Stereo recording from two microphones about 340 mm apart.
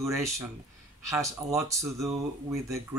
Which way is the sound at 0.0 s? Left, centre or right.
Centre.